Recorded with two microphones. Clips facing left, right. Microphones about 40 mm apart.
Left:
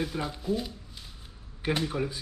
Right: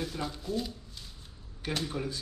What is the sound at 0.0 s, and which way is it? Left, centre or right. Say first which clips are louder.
Speech: left 4 dB; centre.